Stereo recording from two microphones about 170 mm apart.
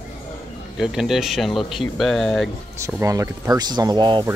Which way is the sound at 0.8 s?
Centre (ahead or behind).